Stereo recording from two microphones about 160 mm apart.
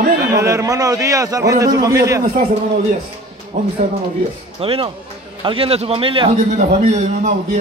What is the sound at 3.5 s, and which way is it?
Speech, 55° right (ahead or behind).